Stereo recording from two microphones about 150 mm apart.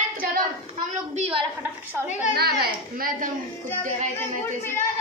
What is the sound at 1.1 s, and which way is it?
Speech, 40° right (ahead or behind).